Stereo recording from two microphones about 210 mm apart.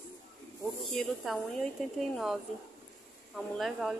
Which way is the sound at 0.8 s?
Centre (ahead or behind).